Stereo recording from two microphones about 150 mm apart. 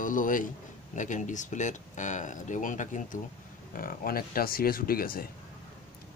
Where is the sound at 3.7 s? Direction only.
70° left (ahead or behind).